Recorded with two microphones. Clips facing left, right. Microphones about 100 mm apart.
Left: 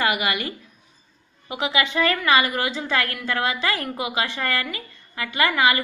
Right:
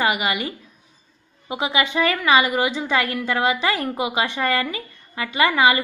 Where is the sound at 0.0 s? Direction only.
20° right (ahead or behind).